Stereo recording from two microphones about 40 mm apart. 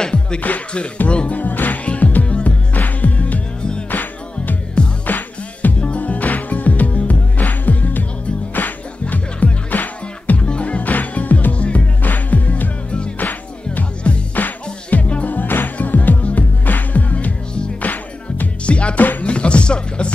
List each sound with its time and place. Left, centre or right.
0.0 s music: left
1.0 s speech: left
1.4 s music: left
2.2 s music: left
2.7 s music: left
3.9 s music: left
10.4 s music: left
12.0 s music: left
15.2 s music: left
18.7 s music: left
18.9 s music: left
19.2 s music: left